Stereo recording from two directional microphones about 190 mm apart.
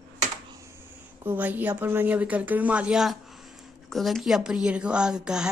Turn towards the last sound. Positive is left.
turn(degrees=-5)  # may be behind; listen again after turning